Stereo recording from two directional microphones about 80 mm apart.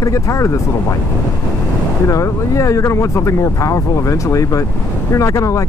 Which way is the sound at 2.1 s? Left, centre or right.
Left.